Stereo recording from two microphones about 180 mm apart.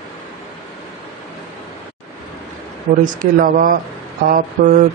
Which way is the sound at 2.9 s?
50° right (ahead or behind).